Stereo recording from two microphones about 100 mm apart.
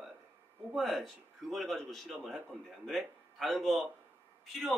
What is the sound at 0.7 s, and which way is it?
A man's voice, centre (ahead or behind).